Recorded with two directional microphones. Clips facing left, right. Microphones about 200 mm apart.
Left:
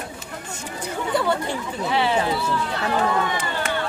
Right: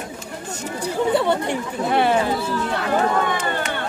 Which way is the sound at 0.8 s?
25° right (ahead or behind).